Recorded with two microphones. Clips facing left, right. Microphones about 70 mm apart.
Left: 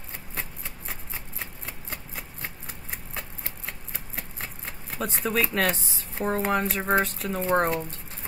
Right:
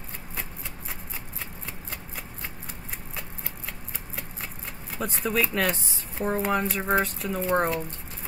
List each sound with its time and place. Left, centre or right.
4.9 s speech: centre